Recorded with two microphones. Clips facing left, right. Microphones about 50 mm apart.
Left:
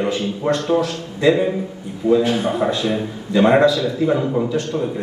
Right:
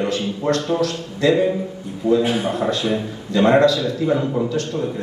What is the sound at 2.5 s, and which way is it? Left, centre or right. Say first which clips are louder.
A man's voice: left 1 dB; centre.